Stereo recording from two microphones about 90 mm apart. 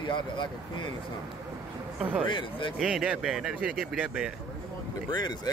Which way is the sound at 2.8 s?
5° right (ahead or behind).